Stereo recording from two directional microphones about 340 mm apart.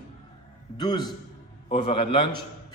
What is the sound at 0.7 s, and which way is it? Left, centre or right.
A man's voice, centre.